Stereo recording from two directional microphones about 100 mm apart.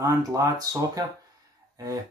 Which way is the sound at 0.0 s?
35° right (ahead or behind).